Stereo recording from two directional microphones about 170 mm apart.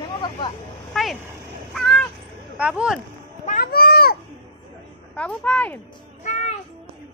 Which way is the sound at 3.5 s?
60° left (ahead or behind).